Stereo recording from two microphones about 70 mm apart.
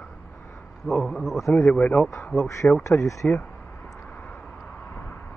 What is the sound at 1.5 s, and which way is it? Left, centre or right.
Speech, centre.